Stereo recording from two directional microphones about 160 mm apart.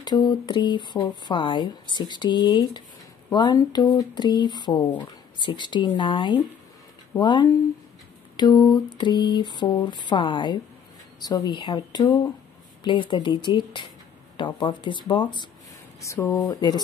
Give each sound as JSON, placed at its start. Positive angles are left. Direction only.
{"t": 0.0, "sound": "speech", "side_deg": 25}
{"t": 16.0, "sound": "speech", "side_deg": 20}